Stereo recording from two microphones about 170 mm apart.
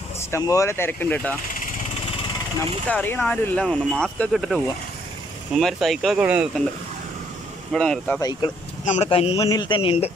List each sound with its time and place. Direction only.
0.2 s speech: 15° left (ahead or behind)
2.9 s speech: 10° left (ahead or behind); by 6.6 s 5° right (ahead or behind)
7.7 s speech: 5° left (ahead or behind)
8.2 s speech: 25° left (ahead or behind)
8.8 s a man's voice: 40° left (ahead or behind)
9.3 s speech: 25° left (ahead or behind)